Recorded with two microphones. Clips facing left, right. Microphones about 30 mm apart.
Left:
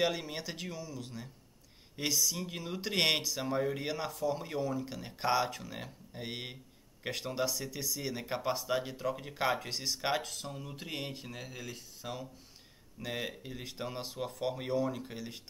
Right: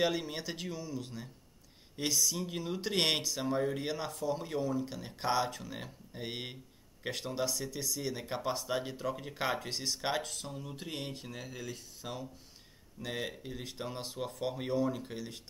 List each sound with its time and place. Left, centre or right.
0.0 s speech: centre